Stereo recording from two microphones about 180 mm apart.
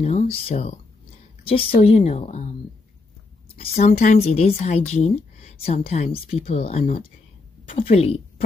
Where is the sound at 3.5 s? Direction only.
35° left (ahead or behind).